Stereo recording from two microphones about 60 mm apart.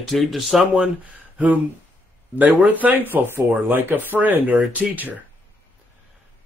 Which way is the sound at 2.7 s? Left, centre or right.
Right.